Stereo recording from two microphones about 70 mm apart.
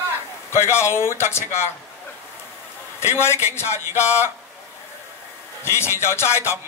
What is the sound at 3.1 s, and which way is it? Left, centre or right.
A man's voice, left.